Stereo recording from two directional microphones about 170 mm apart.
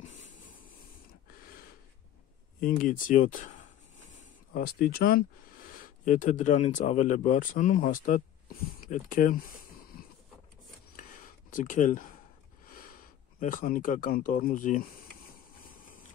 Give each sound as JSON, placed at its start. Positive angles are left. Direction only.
{"t": 0.0, "sound": "a sound", "side_deg": 45}
{"t": 2.6, "sound": "speech", "side_deg": 55}
{"t": 11.5, "sound": "speech", "side_deg": 50}
{"t": 13.4, "sound": "speech", "side_deg": 50}